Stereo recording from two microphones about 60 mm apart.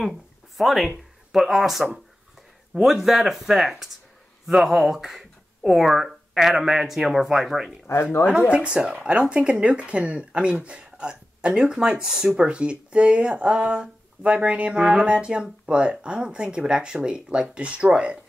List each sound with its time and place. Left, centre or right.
0.6 s speech: centre
8.0 s speech: left
8.3 s speech: centre